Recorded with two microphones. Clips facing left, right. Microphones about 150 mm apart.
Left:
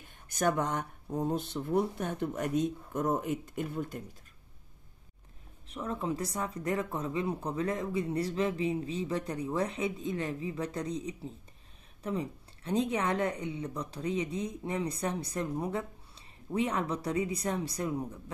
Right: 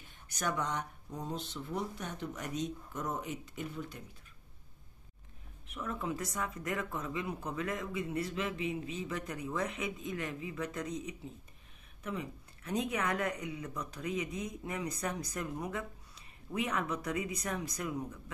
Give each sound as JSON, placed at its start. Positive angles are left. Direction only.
{"t": 0.0, "sound": "speech", "side_deg": 50}
{"t": 5.7, "sound": "speech", "side_deg": 30}